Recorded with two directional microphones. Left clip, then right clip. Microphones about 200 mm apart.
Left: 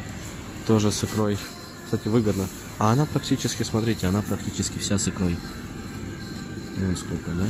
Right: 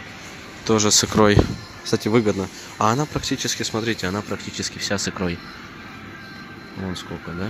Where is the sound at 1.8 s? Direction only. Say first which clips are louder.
Right 5 dB; 35° right (ahead or behind).